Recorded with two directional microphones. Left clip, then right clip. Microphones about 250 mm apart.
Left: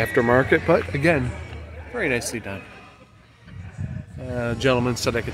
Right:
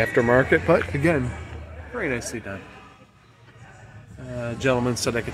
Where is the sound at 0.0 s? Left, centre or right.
Centre.